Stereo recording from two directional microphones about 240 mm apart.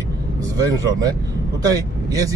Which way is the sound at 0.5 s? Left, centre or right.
Centre.